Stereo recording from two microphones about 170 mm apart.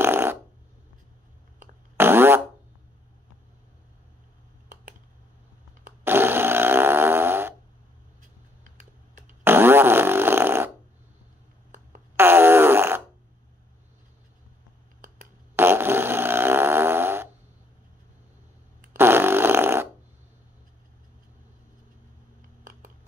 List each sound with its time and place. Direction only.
0.0 s a sound: 15° right (ahead or behind)
2.0 s fart: 15° right (ahead or behind)
6.0 s fart: 15° right (ahead or behind)
9.4 s fart: 15° right (ahead or behind)
12.2 s fart: 15° right (ahead or behind)
15.5 s fart: 15° right (ahead or behind)
18.9 s fart: 15° right (ahead or behind)
22.6 s a sound: 50° right (ahead or behind)